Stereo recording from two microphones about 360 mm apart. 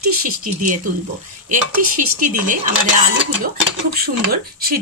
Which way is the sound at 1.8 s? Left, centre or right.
Right.